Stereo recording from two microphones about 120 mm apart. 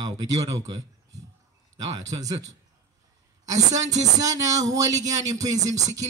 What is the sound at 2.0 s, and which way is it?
Speech, 30° right (ahead or behind).